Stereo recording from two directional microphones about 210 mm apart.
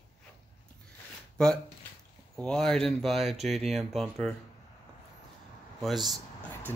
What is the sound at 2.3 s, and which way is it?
Speech, 5° left (ahead or behind).